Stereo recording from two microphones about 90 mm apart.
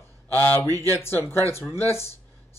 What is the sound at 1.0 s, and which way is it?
Speech, 30° left (ahead or behind).